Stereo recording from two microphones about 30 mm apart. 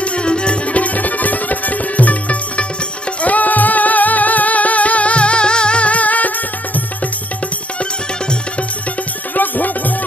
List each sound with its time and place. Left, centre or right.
0.2 s music: left
0.7 s music: left
5.9 s music: left
9.3 s music: left